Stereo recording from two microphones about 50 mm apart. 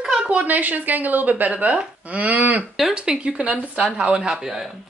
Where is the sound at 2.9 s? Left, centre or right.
Centre.